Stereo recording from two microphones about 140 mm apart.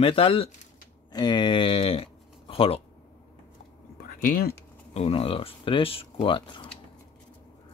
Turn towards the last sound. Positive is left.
turn(degrees=35)  # may be behind; listen again after turning